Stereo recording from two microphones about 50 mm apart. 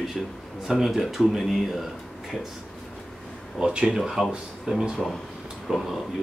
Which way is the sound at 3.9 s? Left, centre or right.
Centre.